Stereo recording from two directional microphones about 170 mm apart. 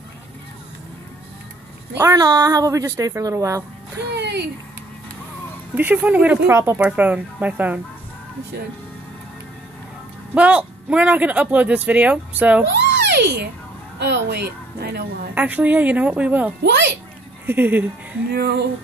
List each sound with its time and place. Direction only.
2.0 s a woman's voice: 20° right (ahead or behind)
4.1 s speech: 80° right
5.8 s speech: 10° right (ahead or behind)
10.3 s speech: 5° right (ahead or behind)
12.6 s a sound: 90° right
13.9 s a woman's voice: 85° right; by 15.0 s 70° right (ahead or behind)
15.3 s speech: 10° right (ahead or behind)
16.6 s a child's voice: 90° right
17.5 s speech: 10° right (ahead or behind)
18.3 s a sound: 70° right (ahead or behind)